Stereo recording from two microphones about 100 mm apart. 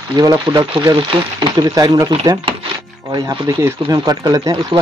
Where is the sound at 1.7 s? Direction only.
35° right (ahead or behind).